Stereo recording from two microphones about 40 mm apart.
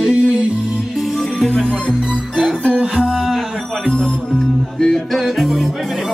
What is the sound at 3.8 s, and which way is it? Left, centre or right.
Music, left.